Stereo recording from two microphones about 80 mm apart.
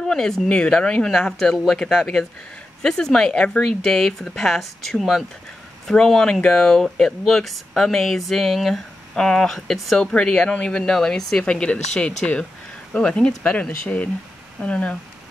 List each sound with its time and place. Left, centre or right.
0.0 s speech: centre